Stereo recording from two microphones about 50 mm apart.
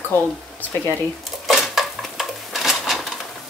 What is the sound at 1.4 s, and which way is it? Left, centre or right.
Dishes, centre.